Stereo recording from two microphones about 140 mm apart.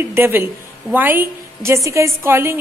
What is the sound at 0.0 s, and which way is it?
A woman's voice, 15° right (ahead or behind).